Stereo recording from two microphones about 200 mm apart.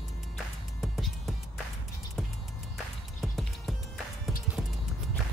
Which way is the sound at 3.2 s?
Centre (ahead or behind).